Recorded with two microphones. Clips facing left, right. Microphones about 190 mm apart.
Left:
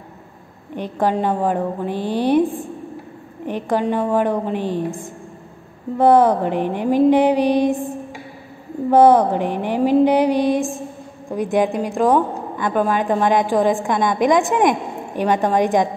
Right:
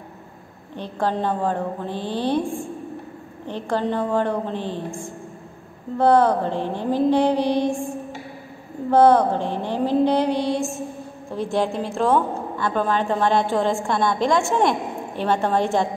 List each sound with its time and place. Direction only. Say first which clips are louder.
0.7 s a woman's voice: left 4 dB; 15° left (ahead or behind)
8.9 s a woman's voice: left 3 dB; 15° left (ahead or behind)